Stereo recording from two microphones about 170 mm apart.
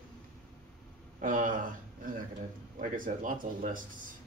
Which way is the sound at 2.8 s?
50° right (ahead or behind).